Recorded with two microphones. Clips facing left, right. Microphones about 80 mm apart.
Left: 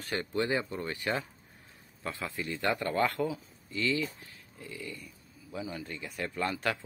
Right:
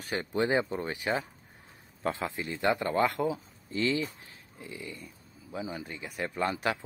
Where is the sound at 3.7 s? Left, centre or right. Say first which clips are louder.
Right 2 dB; right.